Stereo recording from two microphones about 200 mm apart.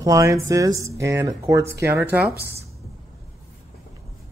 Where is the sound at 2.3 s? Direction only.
50° right (ahead or behind).